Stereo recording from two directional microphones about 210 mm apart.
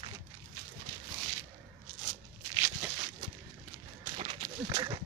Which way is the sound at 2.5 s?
15° right (ahead or behind).